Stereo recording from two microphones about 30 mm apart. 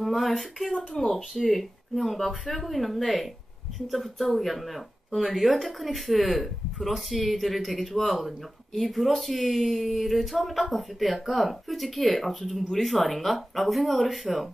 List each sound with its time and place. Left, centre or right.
0.0 s a sound: centre
0.4 s speech: centre
1.0 s speech: left
1.3 s speech: centre
1.6 s speech: centre